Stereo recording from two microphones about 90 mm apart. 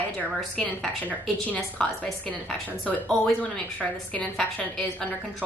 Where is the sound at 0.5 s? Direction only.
15° left (ahead or behind).